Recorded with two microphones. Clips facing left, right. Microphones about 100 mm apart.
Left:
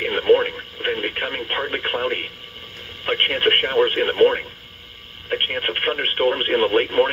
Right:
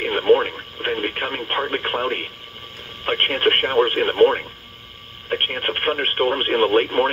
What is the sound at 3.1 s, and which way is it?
Speech, 35° right (ahead or behind).